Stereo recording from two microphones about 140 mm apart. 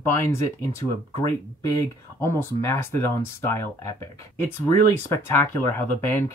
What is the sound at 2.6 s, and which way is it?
Speech, 15° left (ahead or behind).